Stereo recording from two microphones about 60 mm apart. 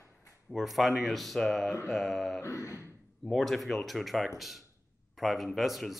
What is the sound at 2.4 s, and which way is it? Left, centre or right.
Speech, left.